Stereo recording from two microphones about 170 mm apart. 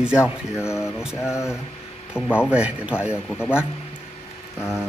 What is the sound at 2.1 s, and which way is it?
Speech, 5° right (ahead or behind).